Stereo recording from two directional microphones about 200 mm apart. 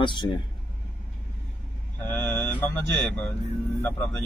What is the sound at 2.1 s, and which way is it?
Mantra, 5° left (ahead or behind).